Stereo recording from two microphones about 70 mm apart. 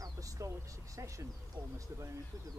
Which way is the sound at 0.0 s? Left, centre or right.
Right.